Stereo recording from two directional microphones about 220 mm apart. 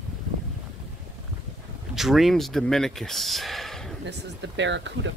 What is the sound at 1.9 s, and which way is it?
Speech, centre (ahead or behind).